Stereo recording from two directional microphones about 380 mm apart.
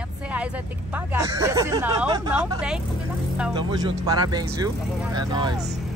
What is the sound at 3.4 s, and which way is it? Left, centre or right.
Speech, centre.